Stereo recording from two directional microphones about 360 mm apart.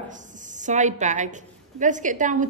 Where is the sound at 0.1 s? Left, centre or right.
Right.